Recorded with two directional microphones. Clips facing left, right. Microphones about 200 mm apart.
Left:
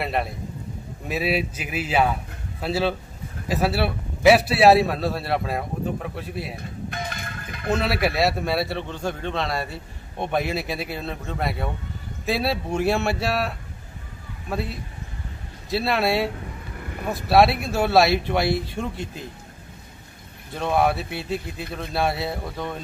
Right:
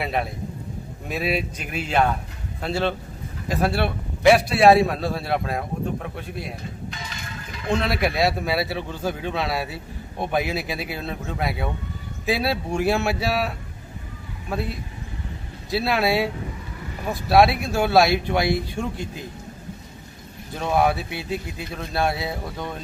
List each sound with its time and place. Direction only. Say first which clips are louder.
0.0 s a man's voice: even; centre (ahead or behind)
6.9 s music: left 4 dB; 55° left (ahead or behind)
7.7 s a man's voice: even; 5° left (ahead or behind)
20.5 s a man's voice: even; centre (ahead or behind)